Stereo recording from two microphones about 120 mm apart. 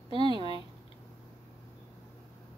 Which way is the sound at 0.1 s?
40° right (ahead or behind).